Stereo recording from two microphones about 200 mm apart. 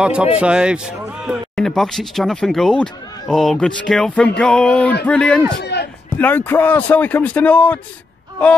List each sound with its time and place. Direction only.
0.0 s a man's voice: 5° right (ahead or behind)
5.6 s a sound: 55° left (ahead or behind)
6.1 s speech: 10° left (ahead or behind)